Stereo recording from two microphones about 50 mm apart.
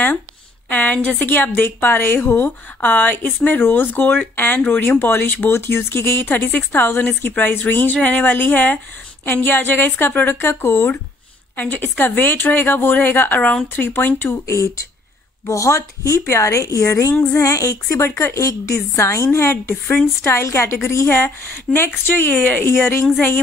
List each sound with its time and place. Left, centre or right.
0.7 s a woman's voice: left
1.3 s a woman's voice: left
5.6 s a woman's voice: left
6.2 s a woman's voice: left
12.0 s a woman's voice: left
14.4 s a woman's voice: left
17.3 s a woman's voice: left
20.2 s a woman's voice: left